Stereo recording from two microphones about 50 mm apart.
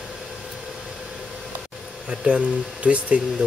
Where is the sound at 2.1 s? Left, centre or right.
Centre.